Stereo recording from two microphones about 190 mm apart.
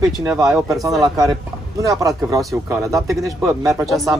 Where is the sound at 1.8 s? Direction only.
20° right (ahead or behind).